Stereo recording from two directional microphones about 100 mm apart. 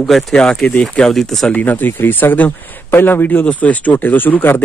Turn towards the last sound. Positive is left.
turn(degrees=20)  # may be behind; listen again after turning